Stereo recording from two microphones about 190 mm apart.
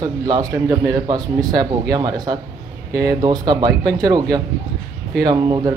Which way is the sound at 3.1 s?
20° right (ahead or behind).